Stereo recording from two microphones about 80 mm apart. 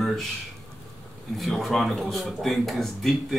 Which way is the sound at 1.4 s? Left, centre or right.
Centre.